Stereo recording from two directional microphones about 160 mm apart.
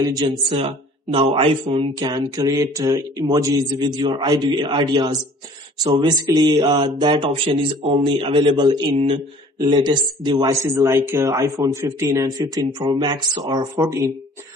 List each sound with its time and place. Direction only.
0.0 s a man's voice: 25° right (ahead or behind)
2.0 s a man's voice: 25° right (ahead or behind)